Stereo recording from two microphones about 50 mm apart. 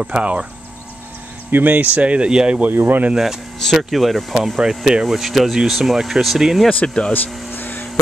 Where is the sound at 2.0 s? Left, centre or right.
Right.